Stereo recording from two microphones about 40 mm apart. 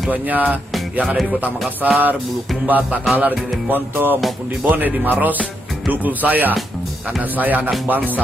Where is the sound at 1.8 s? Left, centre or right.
Right.